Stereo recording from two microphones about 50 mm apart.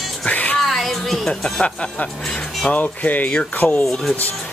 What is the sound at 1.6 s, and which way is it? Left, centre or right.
Speech, left.